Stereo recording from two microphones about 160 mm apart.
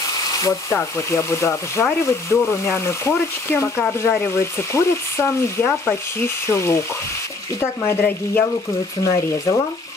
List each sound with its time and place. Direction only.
0.3 s speech: 20° left (ahead or behind)